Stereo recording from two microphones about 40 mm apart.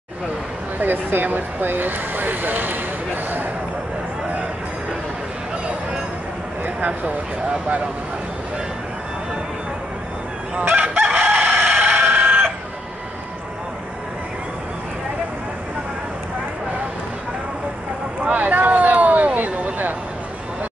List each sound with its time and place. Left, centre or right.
0.7 s speech: right
10.8 s chicken: right
11.1 s chicken: right
18.2 s a sound: right